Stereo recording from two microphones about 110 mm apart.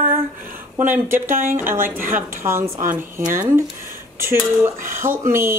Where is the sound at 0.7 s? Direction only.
20° right (ahead or behind).